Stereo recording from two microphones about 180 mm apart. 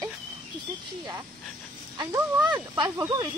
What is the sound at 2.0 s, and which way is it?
Speech, 15° right (ahead or behind).